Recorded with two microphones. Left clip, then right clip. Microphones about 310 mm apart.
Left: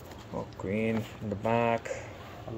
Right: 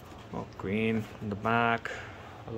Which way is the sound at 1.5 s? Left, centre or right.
Right.